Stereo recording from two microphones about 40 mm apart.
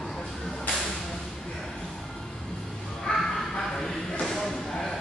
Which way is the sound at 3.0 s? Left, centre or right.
Centre.